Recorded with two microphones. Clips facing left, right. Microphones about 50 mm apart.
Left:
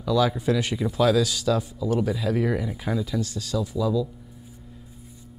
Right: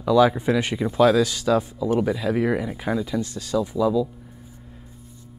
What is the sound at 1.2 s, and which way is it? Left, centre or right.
Speech, right.